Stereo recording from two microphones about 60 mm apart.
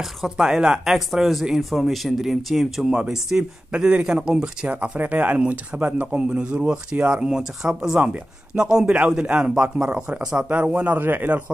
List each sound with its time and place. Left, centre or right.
0.0 s speech: centre; by 6.2 s right
6.2 s speech: centre
10.7 s a man's voice: right